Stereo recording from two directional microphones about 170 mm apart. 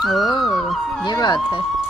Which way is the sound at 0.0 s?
Centre (ahead or behind).